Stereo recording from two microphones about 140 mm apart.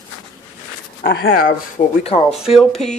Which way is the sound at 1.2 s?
80° left.